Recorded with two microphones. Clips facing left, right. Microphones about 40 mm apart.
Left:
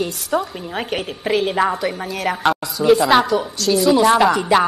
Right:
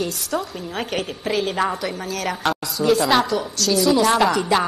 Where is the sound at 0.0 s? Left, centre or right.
Centre.